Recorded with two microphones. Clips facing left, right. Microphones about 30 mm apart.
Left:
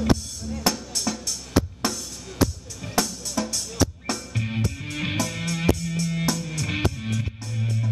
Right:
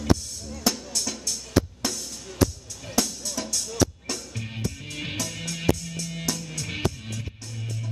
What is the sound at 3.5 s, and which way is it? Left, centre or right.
Music, left.